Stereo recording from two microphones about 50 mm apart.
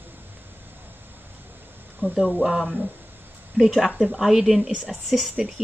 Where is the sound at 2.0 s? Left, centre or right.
Centre.